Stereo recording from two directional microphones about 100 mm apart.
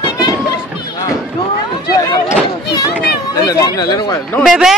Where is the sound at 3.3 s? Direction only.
40° left (ahead or behind).